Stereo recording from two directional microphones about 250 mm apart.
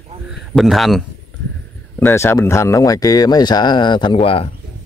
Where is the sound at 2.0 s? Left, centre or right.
Centre.